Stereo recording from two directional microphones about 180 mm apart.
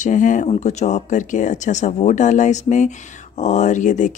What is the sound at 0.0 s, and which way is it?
Speech, 45° left (ahead or behind).